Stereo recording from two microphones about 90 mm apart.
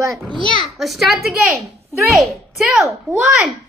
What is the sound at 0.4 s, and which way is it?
Speech, 75° right (ahead or behind).